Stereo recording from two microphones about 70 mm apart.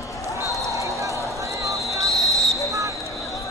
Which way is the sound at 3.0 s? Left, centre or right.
Left.